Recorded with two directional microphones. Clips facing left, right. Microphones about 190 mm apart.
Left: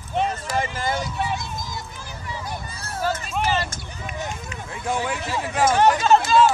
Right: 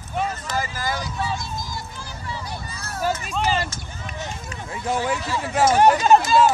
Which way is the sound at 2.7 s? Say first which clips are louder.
Even; 30° left (ahead or behind).